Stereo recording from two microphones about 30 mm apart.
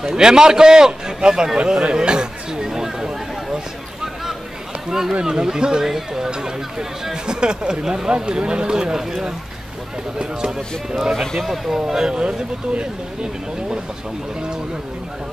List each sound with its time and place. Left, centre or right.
0.0 s a man's voice: right
1.7 s chatter: right
2.6 s a sound: centre
4.8 s a sound: centre
5.2 s a man's voice: right
8.9 s a man's voice: centre
11.1 s speech: centre
12.1 s a man's voice: right